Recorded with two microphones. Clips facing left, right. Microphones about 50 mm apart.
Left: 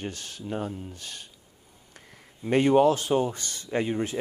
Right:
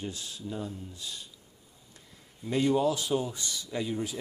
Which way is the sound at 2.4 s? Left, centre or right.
Left.